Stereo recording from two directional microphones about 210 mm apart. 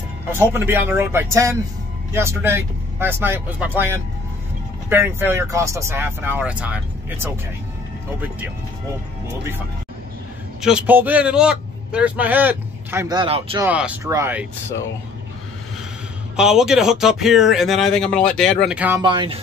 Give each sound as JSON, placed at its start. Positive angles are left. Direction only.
{"t": 0.3, "sound": "a man's voice", "side_deg": -10}
{"t": 10.6, "sound": "a man's voice", "side_deg": -5}
{"t": 13.7, "sound": "a man's voice", "side_deg": -5}
{"t": 16.3, "sound": "speech", "side_deg": 0}
{"t": 18.9, "sound": "speech", "side_deg": -25}